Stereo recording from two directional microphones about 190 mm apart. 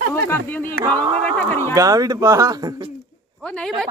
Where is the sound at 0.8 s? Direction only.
25° right (ahead or behind).